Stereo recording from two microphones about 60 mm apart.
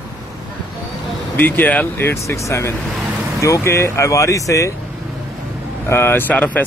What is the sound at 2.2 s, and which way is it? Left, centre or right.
Speech, left.